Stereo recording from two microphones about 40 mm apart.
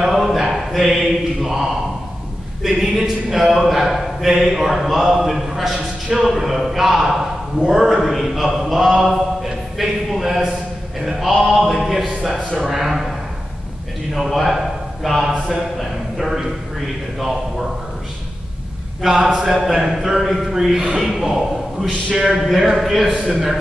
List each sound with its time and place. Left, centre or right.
0.0 s a sound: centre
1.4 s a man's voice: centre
8.5 s a sound: centre
11.4 s speech: centre
14.3 s a man's voice: centre
19.0 s a man's voice: centre
22.1 s speech: centre